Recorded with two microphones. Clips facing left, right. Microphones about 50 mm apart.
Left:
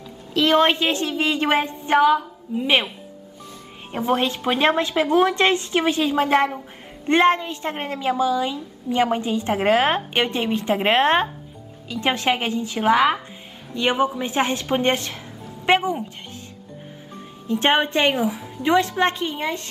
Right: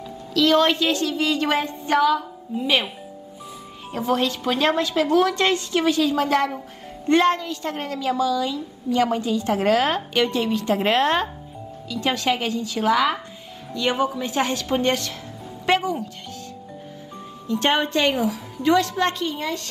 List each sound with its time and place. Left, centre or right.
0.3 s a woman's voice: left
3.9 s a woman's voice: left
17.5 s a woman's voice: left